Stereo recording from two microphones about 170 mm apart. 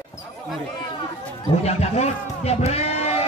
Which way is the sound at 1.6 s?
40° left (ahead or behind).